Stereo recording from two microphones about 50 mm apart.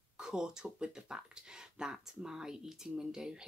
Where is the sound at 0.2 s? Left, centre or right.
Centre.